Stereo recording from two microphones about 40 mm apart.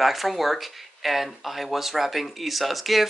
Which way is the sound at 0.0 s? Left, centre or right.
Centre.